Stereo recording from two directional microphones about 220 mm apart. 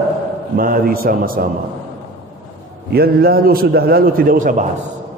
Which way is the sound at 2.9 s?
45° right (ahead or behind).